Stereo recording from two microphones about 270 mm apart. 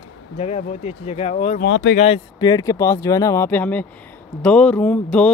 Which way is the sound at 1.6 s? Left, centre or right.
Left.